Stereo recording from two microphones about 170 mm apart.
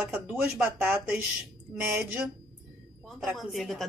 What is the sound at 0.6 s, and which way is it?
Speech, 10° right (ahead or behind).